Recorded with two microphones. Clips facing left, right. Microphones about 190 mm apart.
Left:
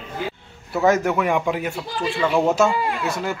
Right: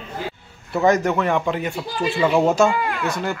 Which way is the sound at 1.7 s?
5° right (ahead or behind).